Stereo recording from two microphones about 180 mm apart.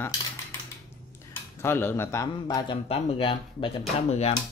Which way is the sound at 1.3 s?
10° left (ahead or behind).